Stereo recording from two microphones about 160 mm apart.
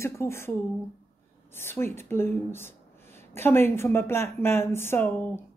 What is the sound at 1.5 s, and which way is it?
A woman's voice, 15° left (ahead or behind).